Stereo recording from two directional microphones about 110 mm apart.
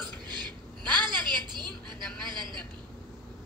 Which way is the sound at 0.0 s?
40° right (ahead or behind).